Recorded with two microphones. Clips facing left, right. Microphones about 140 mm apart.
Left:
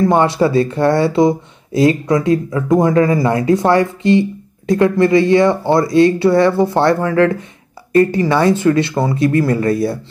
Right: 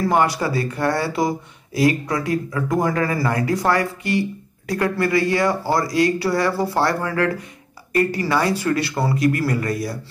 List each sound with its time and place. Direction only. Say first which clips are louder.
0.0 s speech: left 6 dB; 25° left (ahead or behind)